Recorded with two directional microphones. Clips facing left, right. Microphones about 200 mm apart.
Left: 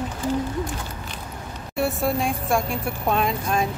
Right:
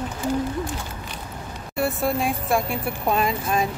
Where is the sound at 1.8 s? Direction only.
Centre (ahead or behind).